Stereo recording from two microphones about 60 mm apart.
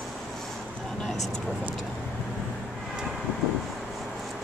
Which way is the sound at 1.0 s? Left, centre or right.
Centre.